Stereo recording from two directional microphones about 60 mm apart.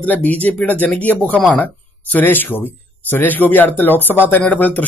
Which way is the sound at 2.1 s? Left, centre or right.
Left.